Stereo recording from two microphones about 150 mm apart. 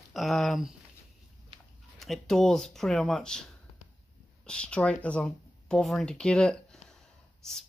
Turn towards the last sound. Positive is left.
turn(degrees=5)  # may be behind; listen again after turning